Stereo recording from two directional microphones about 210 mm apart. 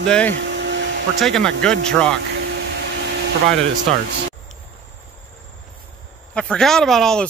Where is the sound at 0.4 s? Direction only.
55° right (ahead or behind).